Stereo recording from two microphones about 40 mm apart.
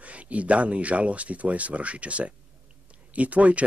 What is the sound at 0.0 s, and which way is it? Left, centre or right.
Speech, right.